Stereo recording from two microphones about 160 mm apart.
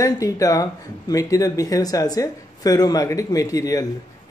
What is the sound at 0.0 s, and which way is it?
Speech, 20° left (ahead or behind).